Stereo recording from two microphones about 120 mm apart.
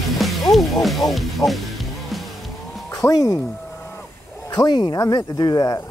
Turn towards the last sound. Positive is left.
turn(degrees=30)  # may be behind; listen again after turning